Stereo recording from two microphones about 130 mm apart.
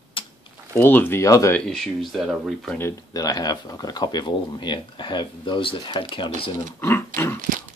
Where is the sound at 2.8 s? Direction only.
20° left (ahead or behind); by 6.3 s 40° left (ahead or behind).